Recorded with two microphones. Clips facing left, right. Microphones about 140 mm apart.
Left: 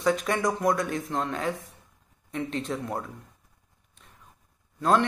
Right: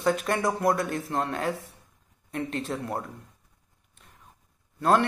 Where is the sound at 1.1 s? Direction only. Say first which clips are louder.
Right 1 dB; 40° right (ahead or behind).